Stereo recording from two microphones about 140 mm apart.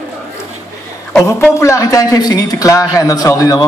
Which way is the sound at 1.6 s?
20° left (ahead or behind).